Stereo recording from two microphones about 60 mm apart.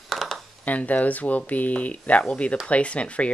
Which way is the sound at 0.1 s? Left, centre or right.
Centre.